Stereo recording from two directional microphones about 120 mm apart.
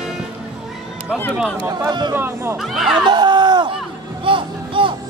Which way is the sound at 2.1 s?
20° right (ahead or behind).